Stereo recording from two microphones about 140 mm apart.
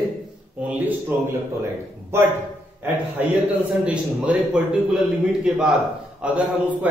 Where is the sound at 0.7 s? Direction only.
10° right (ahead or behind).